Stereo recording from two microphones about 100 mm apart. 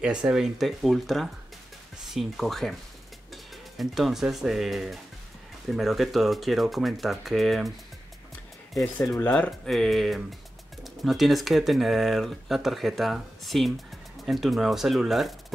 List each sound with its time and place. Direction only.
0.0 s speech: 10° right (ahead or behind)
3.7 s speech: centre (ahead or behind)
9.0 s speech: 25° left (ahead or behind)
9.7 s speech: centre (ahead or behind)